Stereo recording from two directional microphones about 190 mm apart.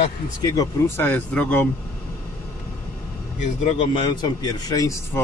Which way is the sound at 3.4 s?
40° left (ahead or behind).